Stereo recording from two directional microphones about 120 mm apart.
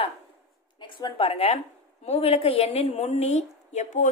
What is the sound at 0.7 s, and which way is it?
A woman's voice, 40° left (ahead or behind).